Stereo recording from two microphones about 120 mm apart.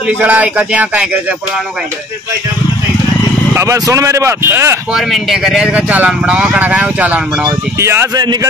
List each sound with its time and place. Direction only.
0.2 s speech: 10° right (ahead or behind)
3.5 s speech: 25° right (ahead or behind)
4.9 s speech: centre (ahead or behind); by 8.1 s 20° right (ahead or behind)